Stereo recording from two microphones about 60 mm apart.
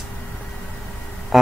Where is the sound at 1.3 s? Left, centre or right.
Centre.